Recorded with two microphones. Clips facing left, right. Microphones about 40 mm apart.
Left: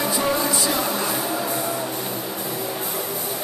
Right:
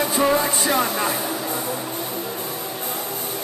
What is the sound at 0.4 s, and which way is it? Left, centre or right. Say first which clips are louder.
Music: right 1 dB; right.